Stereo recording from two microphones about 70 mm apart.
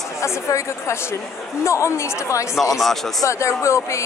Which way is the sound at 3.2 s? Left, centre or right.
Left.